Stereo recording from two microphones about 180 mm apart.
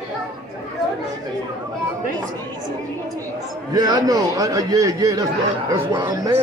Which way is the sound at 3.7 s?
20° right (ahead or behind).